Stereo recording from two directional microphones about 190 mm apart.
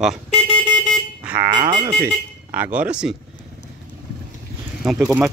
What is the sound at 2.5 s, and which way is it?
Speech, 10° right (ahead or behind).